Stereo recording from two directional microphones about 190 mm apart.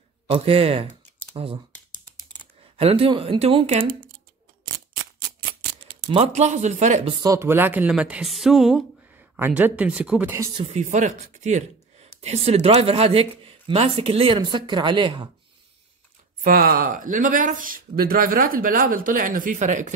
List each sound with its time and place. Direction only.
0.3 s speech: 30° right (ahead or behind)
2.4 s a sound: 10° left (ahead or behind)
2.8 s speech: 30° right (ahead or behind)
6.0 s speech: 30° right (ahead or behind)
7.2 s speech: 15° right (ahead or behind)
10.5 s speech: 30° right (ahead or behind)
16.4 s speech: 50° right (ahead or behind)